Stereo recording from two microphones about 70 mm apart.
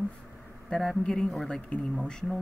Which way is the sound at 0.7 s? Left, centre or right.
Centre.